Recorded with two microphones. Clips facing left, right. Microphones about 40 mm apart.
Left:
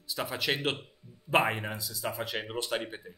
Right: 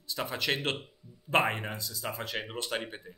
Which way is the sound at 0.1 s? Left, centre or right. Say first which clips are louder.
Even; centre.